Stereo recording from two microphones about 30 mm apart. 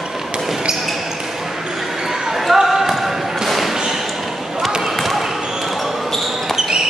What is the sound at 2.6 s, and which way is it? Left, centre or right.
Basketball bounce, centre.